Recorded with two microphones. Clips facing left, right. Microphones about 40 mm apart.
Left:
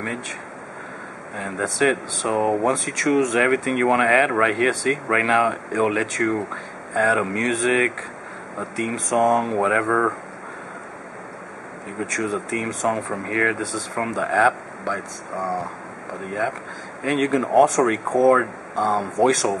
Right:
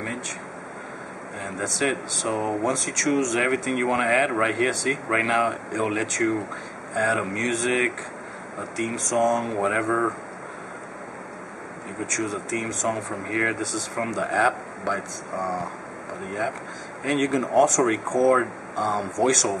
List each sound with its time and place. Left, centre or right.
1.3 s speech: centre
12.0 s speech: centre